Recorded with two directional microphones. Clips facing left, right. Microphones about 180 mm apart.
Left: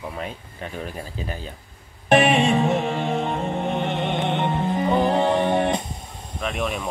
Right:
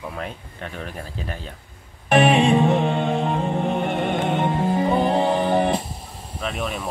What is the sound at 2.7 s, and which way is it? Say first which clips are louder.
Music: right 2 dB; 30° right (ahead or behind).